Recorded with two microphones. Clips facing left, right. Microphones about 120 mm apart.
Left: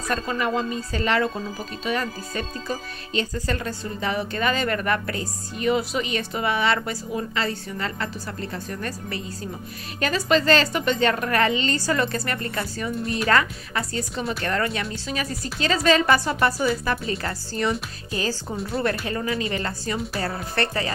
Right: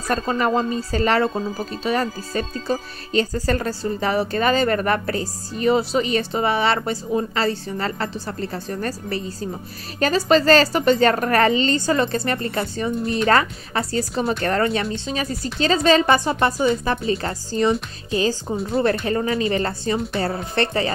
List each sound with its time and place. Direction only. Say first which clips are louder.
0.1 s speech: right 5 dB; 40° right (ahead or behind)
11.7 s a woman's voice: right 4 dB; 25° right (ahead or behind)
19.0 s a woman's voice: right 5 dB; 30° right (ahead or behind)